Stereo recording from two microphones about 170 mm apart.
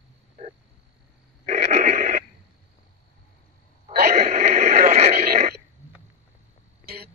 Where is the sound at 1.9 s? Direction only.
45° right (ahead or behind).